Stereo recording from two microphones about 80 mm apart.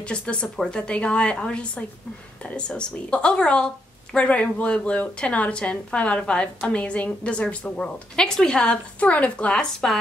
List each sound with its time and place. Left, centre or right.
0.0 s a woman's voice: centre